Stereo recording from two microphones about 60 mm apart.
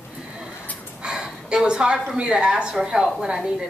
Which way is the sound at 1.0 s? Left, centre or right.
Centre.